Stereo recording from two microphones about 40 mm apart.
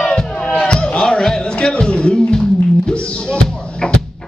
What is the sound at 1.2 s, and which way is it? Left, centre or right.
Music, centre.